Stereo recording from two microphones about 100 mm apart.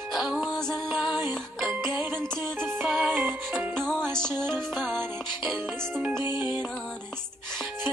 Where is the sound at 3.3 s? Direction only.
20° right (ahead or behind).